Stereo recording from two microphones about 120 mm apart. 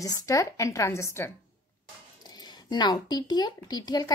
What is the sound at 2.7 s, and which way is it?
A woman's voice, 35° left (ahead or behind).